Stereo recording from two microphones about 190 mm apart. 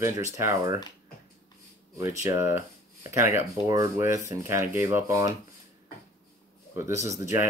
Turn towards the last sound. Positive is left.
turn(degrees=-15)  # may be behind; listen again after turning